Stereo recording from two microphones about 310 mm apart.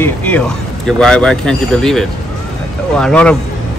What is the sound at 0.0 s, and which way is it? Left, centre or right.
Speech, centre.